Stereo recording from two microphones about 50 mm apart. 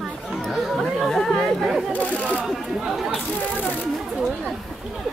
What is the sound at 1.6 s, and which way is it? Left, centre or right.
Speech, centre.